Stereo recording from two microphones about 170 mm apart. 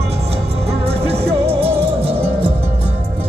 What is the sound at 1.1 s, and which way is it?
Music, 35° right (ahead or behind).